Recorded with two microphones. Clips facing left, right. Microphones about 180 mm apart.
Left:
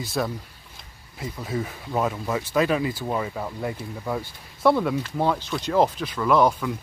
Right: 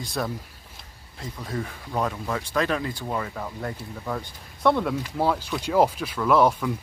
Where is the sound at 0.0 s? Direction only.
Centre (ahead or behind).